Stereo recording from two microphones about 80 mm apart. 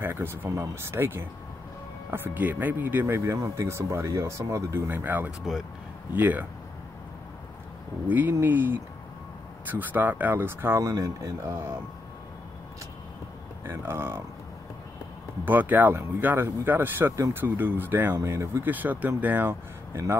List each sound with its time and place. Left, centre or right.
0.0 s speech: right
3.3 s speech: right
4.8 s speech: right
8.1 s speech: right
10.8 s speech: right
13.7 s speech: right
15.4 s speech: right
18.2 s speech: right